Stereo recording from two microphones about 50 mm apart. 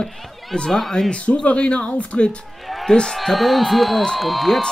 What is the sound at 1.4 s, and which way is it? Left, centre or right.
A man's voice, left.